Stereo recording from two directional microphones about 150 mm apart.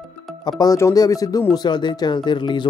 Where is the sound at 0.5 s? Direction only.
25° left (ahead or behind).